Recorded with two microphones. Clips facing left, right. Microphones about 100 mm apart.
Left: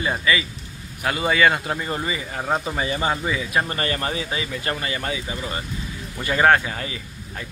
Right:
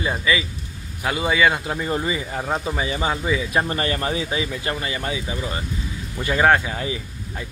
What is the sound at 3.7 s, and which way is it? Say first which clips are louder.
Speech: right 2 dB; 15° right (ahead or behind).